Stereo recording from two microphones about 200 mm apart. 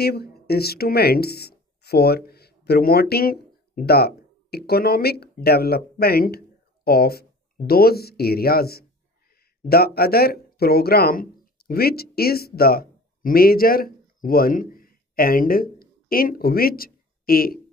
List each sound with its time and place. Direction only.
0.0 s speech: 50° left (ahead or behind)